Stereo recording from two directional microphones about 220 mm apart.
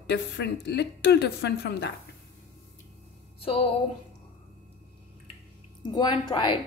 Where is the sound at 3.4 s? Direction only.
25° left (ahead or behind).